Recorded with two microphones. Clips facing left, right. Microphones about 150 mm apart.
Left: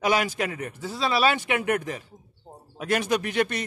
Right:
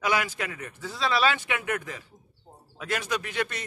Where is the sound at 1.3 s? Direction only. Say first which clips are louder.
Left 5 dB; 45° left (ahead or behind).